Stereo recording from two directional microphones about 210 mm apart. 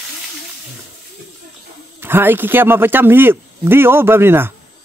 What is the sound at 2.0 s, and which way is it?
A man's voice, 10° right (ahead or behind).